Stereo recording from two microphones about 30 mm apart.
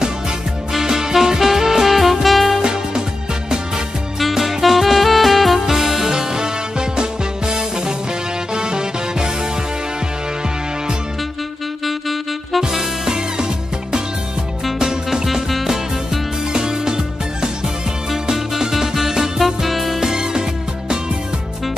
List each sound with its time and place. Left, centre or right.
0.7 s music: right
1.4 s music: centre
2.6 s music: right
4.2 s music: centre
6.1 s music: right
11.8 s saxophone: centre
13.0 s music: right
15.6 s music: centre
16.5 s music: right
18.3 s music: centre
19.3 s music: centre
20.0 s music: right